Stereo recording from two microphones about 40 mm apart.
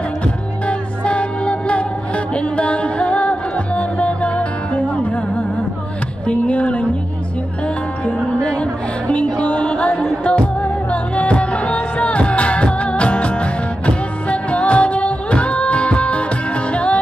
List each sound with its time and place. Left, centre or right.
0.7 s music: left